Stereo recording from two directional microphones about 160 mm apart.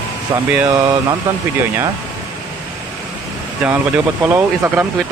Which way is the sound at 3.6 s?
5° right (ahead or behind).